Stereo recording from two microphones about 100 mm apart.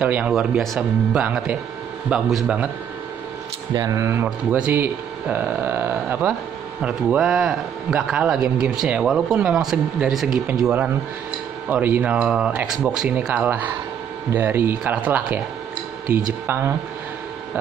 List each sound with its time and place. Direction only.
0.0 s speech: 15° right (ahead or behind)
3.7 s speech: 35° right (ahead or behind); by 10.7 s 5° right (ahead or behind)
11.7 s speech: 15° right (ahead or behind)
13.3 s speech: 15° right (ahead or behind)